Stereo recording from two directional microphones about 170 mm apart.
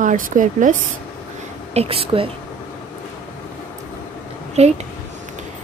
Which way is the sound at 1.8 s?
35° right (ahead or behind).